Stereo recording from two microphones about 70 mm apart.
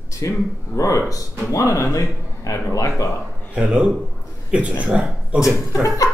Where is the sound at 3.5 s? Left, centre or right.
Centre.